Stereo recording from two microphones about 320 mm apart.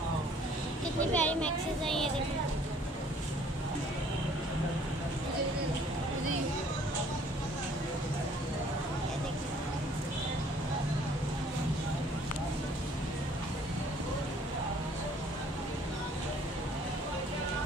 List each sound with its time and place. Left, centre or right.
1.1 s a child's voice: centre